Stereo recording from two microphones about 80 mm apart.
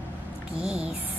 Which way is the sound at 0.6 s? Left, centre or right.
Centre.